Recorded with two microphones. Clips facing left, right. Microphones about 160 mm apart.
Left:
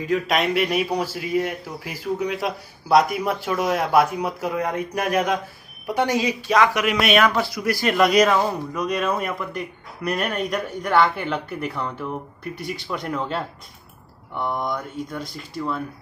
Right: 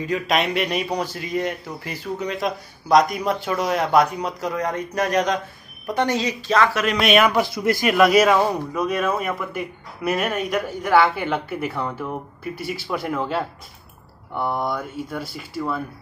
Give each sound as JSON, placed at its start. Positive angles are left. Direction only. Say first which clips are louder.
{"t": 0.0, "sound": "a man's voice", "louder": "even", "side_deg": 0}
{"t": 7.2, "sound": "a man's voice", "louder": "right 2 dB", "side_deg": -15}
{"t": 7.9, "sound": "speech", "louder": "right 1 dB", "side_deg": -5}
{"t": 14.4, "sound": "speech", "louder": "right 2 dB", "side_deg": -5}